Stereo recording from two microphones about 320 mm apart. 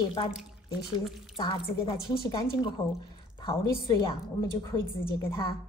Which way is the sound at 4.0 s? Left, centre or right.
Centre.